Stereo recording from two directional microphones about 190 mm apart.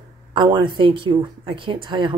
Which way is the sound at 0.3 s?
25° right (ahead or behind).